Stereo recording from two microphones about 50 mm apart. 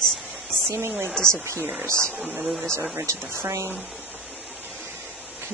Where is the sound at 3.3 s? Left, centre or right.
Right.